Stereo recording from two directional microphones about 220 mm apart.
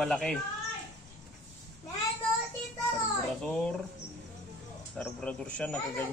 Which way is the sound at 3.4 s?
5° left (ahead or behind).